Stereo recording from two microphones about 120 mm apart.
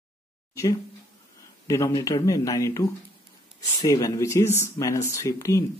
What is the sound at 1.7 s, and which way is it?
Speech, 25° left (ahead or behind).